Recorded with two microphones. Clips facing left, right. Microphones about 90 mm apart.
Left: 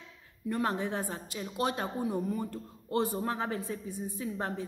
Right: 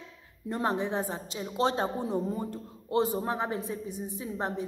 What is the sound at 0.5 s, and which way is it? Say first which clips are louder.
A woman's voice: right 2 dB; 20° right (ahead or behind).